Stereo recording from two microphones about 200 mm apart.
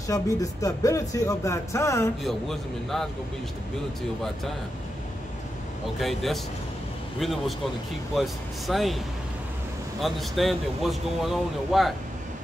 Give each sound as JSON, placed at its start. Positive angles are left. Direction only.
{"t": 0.0, "sound": "speech", "side_deg": 15}
{"t": 2.2, "sound": "speech", "side_deg": 0}
{"t": 5.9, "sound": "speech", "side_deg": 0}
{"t": 10.0, "sound": "speech", "side_deg": 0}